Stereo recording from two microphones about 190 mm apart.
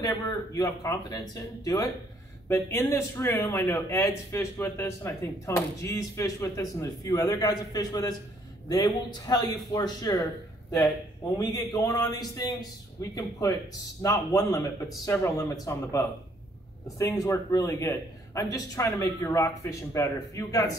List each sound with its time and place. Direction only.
0.0 s a man's voice: 20° left (ahead or behind)
11.3 s a man's voice: 20° left (ahead or behind)
17.2 s a man's voice: 15° left (ahead or behind)